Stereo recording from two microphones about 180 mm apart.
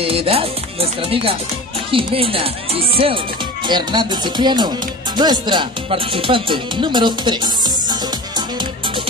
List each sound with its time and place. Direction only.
0.0 s music: 30° right (ahead or behind)
3.6 s speech: 25° right (ahead or behind)